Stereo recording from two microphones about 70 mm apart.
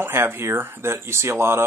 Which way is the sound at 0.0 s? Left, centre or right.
Right.